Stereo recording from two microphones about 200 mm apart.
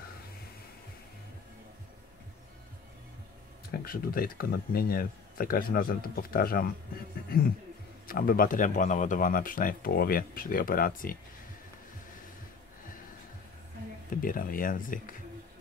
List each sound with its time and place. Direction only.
3.8 s speech: 45° left (ahead or behind)
8.1 s speech: 45° left (ahead or behind)
14.2 s speech: 45° left (ahead or behind)